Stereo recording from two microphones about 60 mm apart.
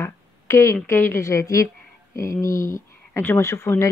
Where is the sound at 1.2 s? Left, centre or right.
Left.